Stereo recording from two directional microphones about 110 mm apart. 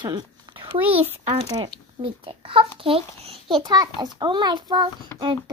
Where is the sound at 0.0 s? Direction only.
40° right (ahead or behind).